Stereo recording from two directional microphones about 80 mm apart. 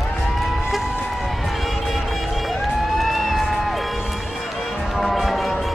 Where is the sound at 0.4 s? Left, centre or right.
Centre.